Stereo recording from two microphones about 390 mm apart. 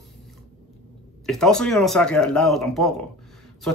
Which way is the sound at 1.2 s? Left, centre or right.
Centre.